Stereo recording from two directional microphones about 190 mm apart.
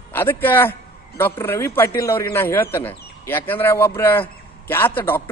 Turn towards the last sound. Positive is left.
turn(degrees=10)  # may be behind; listen again after turning